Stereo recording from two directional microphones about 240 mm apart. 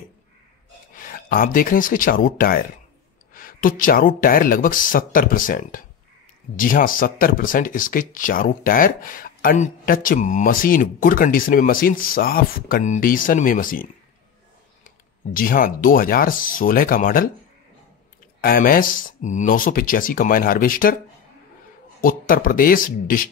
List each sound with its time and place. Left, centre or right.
0.9 s speech: left
15.3 s speech: left
18.4 s speech: left
22.0 s speech: left